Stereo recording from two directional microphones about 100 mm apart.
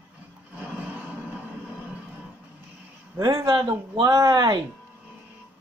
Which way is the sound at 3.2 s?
30° right (ahead or behind).